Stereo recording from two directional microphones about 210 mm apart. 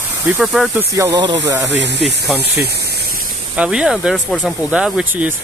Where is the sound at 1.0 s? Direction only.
20° right (ahead or behind).